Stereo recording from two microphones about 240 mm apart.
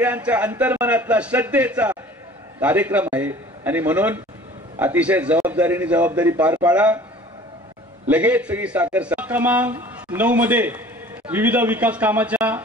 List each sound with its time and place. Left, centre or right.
0.0 s a man's voice: centre
8.1 s a man's voice: centre